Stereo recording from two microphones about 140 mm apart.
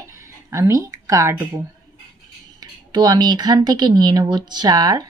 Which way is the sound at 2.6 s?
30° right (ahead or behind).